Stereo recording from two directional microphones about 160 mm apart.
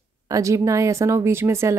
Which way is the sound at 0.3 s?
20° right (ahead or behind).